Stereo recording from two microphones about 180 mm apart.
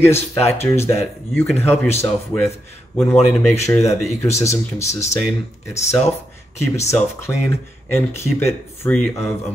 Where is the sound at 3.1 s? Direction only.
35° left (ahead or behind).